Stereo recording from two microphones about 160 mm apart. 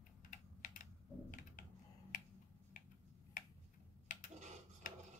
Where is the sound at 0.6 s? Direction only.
55° left (ahead or behind).